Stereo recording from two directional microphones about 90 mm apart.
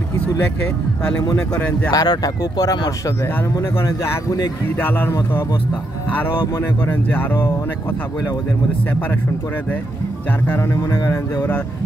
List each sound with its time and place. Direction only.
1.5 s speech: 15° left (ahead or behind)
1.9 s speech: 50° left (ahead or behind)
3.7 s speech: 30° left (ahead or behind)
4.7 s speech: 20° left (ahead or behind)
6.8 s speech: 20° left (ahead or behind)
10.4 s speech: 25° left (ahead or behind)
11.0 s speech: 45° left (ahead or behind)